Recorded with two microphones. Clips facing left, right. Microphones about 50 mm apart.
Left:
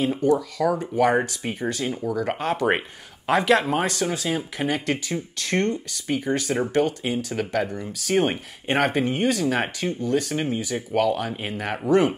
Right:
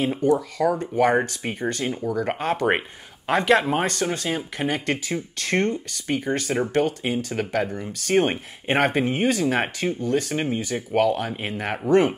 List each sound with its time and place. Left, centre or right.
0.0 s speech: centre